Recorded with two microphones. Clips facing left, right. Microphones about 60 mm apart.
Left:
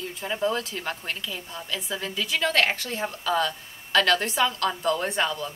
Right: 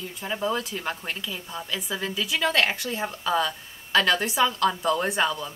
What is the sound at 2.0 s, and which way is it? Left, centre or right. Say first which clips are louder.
A woman's voice: right 1 dB; centre.